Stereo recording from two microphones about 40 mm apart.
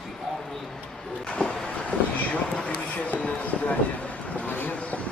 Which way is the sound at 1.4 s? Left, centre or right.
Left.